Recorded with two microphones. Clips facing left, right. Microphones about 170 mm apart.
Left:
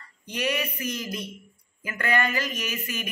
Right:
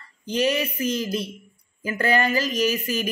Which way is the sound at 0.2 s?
30° right (ahead or behind).